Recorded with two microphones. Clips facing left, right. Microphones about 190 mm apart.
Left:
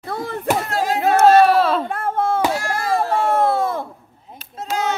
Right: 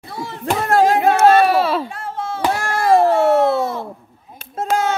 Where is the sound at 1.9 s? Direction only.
55° left (ahead or behind).